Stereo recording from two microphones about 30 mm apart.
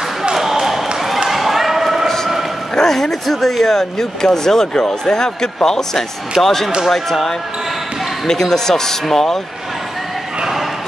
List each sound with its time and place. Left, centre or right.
0.3 s basketball bounce: centre
2.7 s speech: centre